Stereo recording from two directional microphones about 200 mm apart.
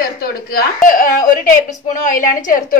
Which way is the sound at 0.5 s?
45° left (ahead or behind).